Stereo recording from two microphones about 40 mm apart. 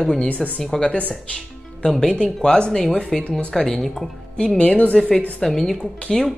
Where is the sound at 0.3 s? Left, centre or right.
Left.